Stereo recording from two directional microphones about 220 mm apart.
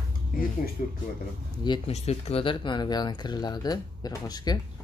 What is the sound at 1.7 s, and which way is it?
Speech, 30° left (ahead or behind).